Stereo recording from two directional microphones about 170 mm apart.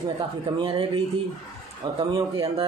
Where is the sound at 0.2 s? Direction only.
30° right (ahead or behind).